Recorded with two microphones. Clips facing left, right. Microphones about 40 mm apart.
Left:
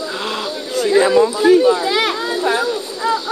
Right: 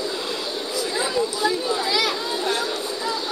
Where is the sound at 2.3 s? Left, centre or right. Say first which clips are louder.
Left 7 dB; centre.